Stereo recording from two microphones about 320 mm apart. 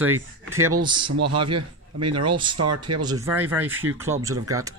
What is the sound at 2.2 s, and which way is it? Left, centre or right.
Speech, centre.